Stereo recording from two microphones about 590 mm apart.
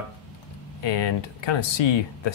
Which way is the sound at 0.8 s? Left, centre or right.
Left.